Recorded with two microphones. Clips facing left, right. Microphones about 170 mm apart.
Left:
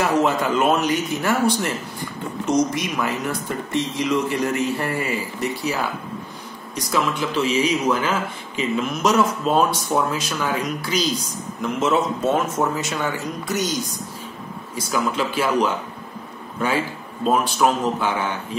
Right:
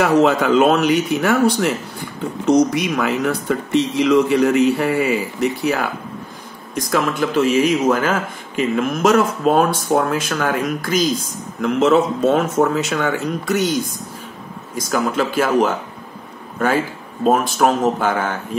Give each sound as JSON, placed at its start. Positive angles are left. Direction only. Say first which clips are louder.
{"t": 0.0, "sound": "speech", "louder": "right 5 dB", "side_deg": -90}
{"t": 2.5, "sound": "speech", "louder": "right 5 dB", "side_deg": -65}
{"t": 2.9, "sound": "speech", "louder": "right 5 dB", "side_deg": -90}
{"t": 6.7, "sound": "speech", "louder": "right 3 dB", "side_deg": -50}
{"t": 11.6, "sound": "speech", "louder": "right 6 dB", "side_deg": -70}
{"t": 14.8, "sound": "speech", "louder": "right 4 dB", "side_deg": -45}